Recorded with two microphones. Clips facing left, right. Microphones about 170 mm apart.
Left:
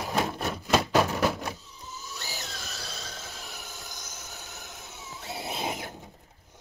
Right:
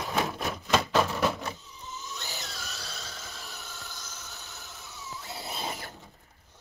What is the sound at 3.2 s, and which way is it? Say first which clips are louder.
Train: left 1 dB; 20° left (ahead or behind).